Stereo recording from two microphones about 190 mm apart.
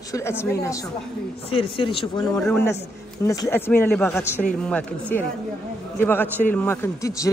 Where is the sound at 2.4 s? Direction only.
5° left (ahead or behind).